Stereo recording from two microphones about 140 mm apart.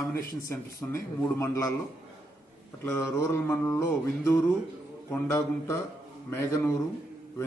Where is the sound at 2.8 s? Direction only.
20° left (ahead or behind).